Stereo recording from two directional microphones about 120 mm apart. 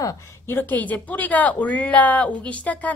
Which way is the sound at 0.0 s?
20° left (ahead or behind).